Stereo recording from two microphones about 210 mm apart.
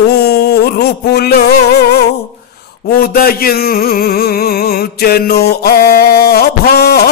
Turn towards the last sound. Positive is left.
turn(degrees=50)  # may be behind; listen again after turning